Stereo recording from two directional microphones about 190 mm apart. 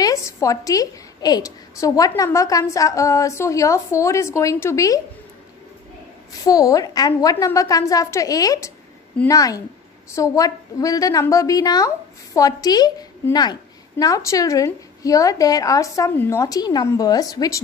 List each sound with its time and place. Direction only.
0.0 s a woman's voice: 15° left (ahead or behind)
6.4 s a woman's voice: 20° left (ahead or behind)